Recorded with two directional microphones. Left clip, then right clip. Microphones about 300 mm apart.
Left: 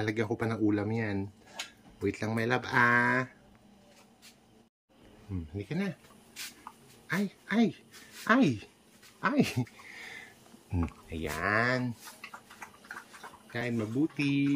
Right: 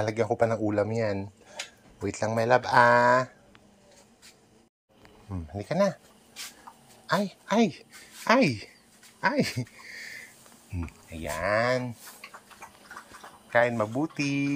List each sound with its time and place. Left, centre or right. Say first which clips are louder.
0.0 s speech: right 7 dB; centre
5.6 s speech: right 12 dB; right
7.2 s speech: right 5 dB; centre
9.2 s a sound: right 3 dB; centre
10.9 s speech: right 2 dB; centre
13.5 s speech: right 11 dB; right